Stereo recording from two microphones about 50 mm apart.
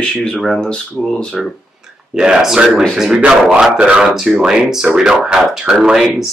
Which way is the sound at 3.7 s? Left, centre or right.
Right.